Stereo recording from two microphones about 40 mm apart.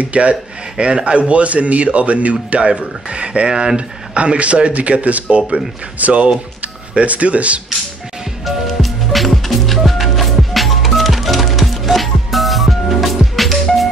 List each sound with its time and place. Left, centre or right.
0.0 s a man's voice: right
8.5 s music: centre